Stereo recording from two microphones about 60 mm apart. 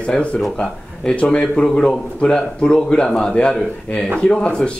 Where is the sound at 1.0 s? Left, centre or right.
Centre.